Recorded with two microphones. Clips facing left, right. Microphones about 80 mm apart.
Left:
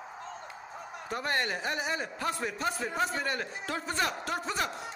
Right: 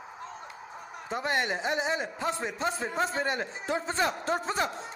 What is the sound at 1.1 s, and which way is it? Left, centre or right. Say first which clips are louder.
A man's voice: right 2 dB; centre.